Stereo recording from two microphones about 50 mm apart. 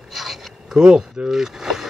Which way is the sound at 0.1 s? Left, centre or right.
Centre.